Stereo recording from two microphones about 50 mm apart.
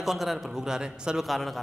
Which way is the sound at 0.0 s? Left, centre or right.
Centre.